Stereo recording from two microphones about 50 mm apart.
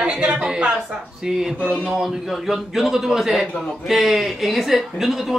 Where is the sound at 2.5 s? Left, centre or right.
Centre.